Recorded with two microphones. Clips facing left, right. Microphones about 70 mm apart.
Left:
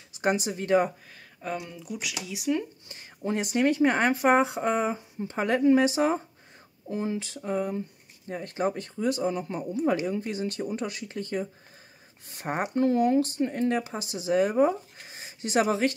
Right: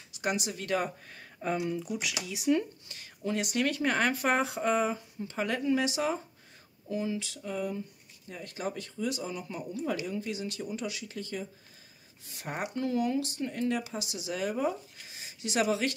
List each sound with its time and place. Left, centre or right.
0.1 s speech: left
1.1 s speech: centre
2.9 s speech: left